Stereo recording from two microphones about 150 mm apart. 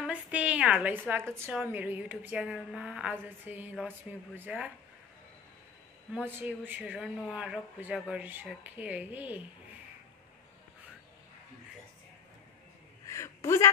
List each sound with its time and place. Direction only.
0.0 s a woman's voice: 10° right (ahead or behind)
6.1 s a woman's voice: 10° right (ahead or behind)
13.0 s a sound: 20° left (ahead or behind)